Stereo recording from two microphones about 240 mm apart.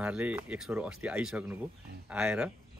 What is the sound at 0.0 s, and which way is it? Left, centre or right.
Speech, centre.